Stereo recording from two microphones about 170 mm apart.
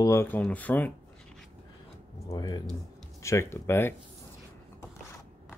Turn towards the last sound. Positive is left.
turn(degrees=15)  # may be behind; listen again after turning